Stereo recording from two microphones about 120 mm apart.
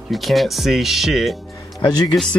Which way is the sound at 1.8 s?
35° left (ahead or behind).